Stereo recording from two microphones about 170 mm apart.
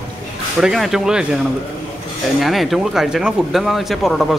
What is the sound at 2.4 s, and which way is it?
Speech, centre (ahead or behind).